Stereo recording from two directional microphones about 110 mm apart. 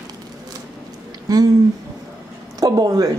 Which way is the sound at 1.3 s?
30° right (ahead or behind).